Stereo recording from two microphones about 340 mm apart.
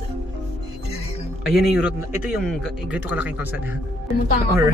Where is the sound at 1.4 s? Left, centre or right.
Left.